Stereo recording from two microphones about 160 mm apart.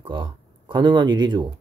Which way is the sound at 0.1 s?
30° right (ahead or behind).